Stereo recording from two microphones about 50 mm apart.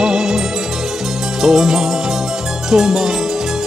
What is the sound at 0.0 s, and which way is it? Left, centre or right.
Music, centre.